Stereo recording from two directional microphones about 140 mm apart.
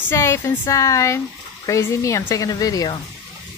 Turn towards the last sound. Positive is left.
turn(degrees=25)  # may be behind; listen again after turning